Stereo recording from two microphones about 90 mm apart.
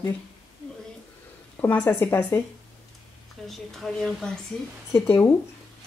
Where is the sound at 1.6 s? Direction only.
20° left (ahead or behind).